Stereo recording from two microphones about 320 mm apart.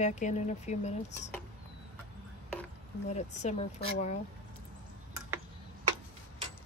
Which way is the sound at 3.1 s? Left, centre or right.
Left.